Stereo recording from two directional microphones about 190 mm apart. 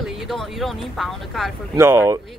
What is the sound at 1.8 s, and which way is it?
Speech, 15° right (ahead or behind).